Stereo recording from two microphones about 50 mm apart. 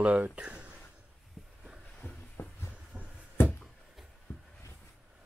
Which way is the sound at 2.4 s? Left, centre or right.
Left.